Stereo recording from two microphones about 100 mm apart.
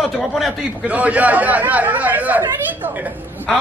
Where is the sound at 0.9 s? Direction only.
15° right (ahead or behind).